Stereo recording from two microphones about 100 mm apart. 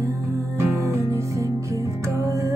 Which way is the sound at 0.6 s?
30° right (ahead or behind).